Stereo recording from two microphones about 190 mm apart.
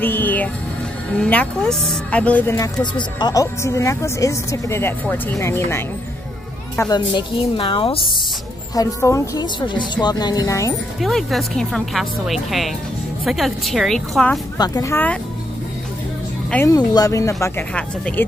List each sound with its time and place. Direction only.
0.0 s a sound: 10° left (ahead or behind)
1.1 s speech: 5° left (ahead or behind)
6.8 s a woman's voice: 25° left (ahead or behind)
8.7 s a woman's voice: 15° left (ahead or behind)
11.0 s speech: centre (ahead or behind)
14.6 s speech: 20° left (ahead or behind)
16.4 s speech: 10° left (ahead or behind)